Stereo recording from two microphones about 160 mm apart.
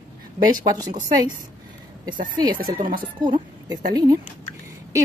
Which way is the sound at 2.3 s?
25° right (ahead or behind).